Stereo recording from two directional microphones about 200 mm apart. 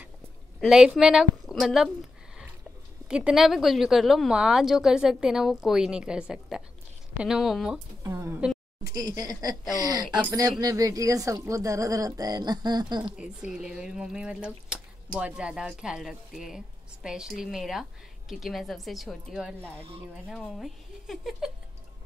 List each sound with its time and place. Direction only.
0.6 s a woman's voice: 5° right (ahead or behind)
8.0 s a sound: 15° right (ahead or behind)
8.9 s speech: 20° right (ahead or behind)
13.0 s a woman's voice: 5° right (ahead or behind)